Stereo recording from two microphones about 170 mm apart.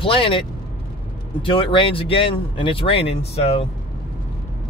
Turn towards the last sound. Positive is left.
turn(degrees=35)  # may be behind; listen again after turning